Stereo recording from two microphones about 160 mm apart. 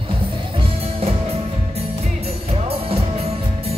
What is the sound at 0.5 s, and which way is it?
Music, 40° right (ahead or behind).